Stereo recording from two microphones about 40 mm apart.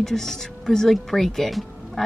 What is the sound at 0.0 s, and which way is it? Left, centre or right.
Speech, centre.